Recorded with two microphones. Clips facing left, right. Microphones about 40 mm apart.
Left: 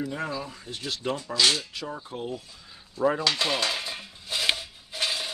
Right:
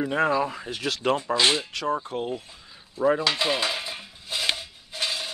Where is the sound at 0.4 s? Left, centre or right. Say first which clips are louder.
Right 9 dB; right.